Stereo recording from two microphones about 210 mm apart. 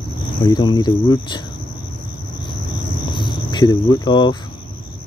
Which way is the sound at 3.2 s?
20° left (ahead or behind).